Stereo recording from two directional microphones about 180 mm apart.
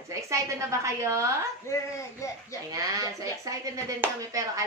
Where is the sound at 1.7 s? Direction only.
15° left (ahead or behind).